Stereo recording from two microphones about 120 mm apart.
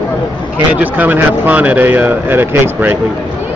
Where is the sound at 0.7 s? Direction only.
15° right (ahead or behind).